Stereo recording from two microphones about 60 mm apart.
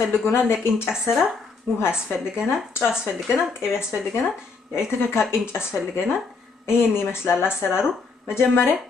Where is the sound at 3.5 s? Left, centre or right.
Left.